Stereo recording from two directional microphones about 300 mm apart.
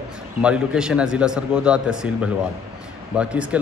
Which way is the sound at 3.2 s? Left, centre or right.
Centre.